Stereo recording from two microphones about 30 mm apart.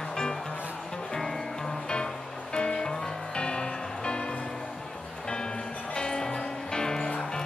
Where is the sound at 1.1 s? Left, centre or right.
Centre.